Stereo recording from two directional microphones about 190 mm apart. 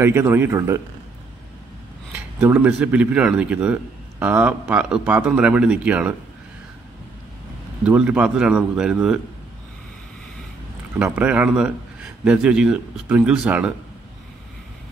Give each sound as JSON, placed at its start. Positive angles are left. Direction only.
{"t": 0.0, "sound": "speech", "side_deg": -10}
{"t": 2.1, "sound": "speech", "side_deg": -10}
{"t": 7.8, "sound": "a man's voice", "side_deg": -5}
{"t": 11.0, "sound": "a man's voice", "side_deg": -5}